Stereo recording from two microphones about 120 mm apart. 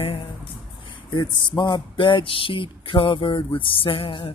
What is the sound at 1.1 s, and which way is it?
Speech, 40° left (ahead or behind).